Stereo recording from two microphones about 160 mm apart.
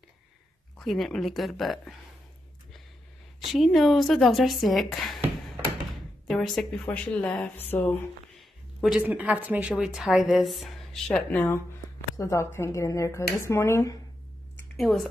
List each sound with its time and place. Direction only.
0.7 s speech: centre (ahead or behind)
3.5 s speech: centre (ahead or behind)
6.2 s speech: centre (ahead or behind)
8.4 s a woman's voice: 5° right (ahead or behind); by 13.9 s 20° left (ahead or behind)
14.8 s speech: centre (ahead or behind)